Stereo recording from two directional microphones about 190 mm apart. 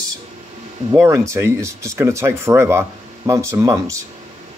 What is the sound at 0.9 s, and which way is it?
Speech, 15° right (ahead or behind).